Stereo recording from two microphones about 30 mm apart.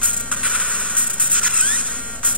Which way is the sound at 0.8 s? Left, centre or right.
Right.